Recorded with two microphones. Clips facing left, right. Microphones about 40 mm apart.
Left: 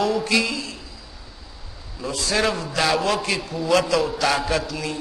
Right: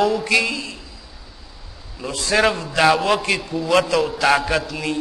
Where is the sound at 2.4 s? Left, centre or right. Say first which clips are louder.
Right 5 dB; centre.